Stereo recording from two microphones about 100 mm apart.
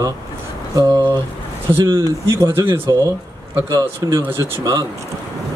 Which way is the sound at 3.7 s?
50° right (ahead or behind).